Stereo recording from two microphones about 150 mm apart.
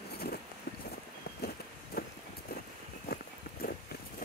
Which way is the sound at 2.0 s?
90° left.